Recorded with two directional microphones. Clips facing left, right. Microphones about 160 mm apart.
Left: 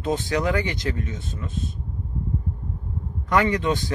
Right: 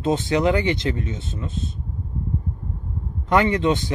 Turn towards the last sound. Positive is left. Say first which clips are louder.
# right 3 dB
turn(degrees=-25)  # may be behind; listen again after turning